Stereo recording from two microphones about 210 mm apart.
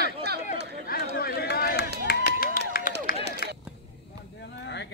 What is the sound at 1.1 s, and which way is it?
Run, 45° left (ahead or behind).